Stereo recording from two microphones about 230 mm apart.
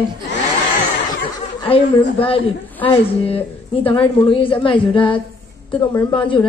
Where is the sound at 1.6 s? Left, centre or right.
Left.